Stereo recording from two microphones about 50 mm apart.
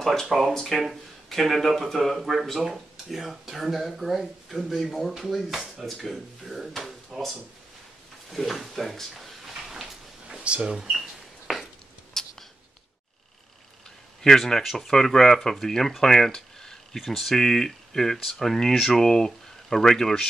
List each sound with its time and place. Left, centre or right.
0.0 s speech: centre
9.5 s a sound: centre
10.2 s speech: centre
10.8 s bird: centre
12.1 s a sound: centre
14.2 s speech: centre